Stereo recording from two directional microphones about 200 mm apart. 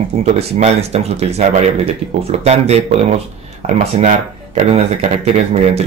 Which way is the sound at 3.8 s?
35° right (ahead or behind).